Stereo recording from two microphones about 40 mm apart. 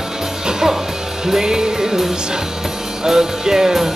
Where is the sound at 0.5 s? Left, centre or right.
Centre.